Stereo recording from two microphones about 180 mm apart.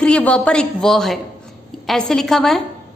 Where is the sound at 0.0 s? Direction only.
5° left (ahead or behind).